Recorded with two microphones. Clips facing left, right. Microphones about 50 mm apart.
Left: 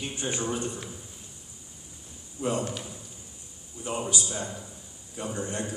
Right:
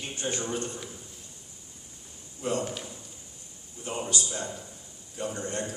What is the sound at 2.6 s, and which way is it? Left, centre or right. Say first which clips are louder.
Speech: left 1 dB; centre.